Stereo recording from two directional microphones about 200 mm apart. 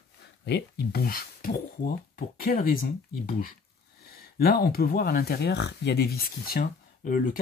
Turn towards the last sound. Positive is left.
turn(degrees=45)  # may be behind; listen again after turning